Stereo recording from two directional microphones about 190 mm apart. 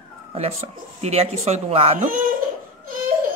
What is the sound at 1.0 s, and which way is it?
Speech, 35° right (ahead or behind).